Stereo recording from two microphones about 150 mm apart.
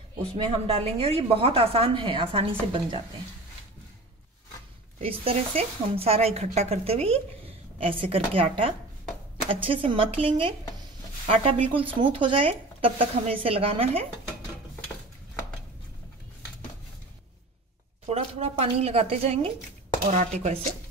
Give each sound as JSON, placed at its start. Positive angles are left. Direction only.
{"t": 0.2, "sound": "a woman's voice", "side_deg": -40}
{"t": 4.9, "sound": "a woman's voice", "side_deg": -40}
{"t": 18.0, "sound": "a woman's voice", "side_deg": -40}